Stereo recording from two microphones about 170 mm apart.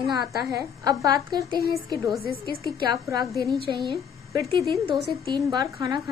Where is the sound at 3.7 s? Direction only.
25° right (ahead or behind).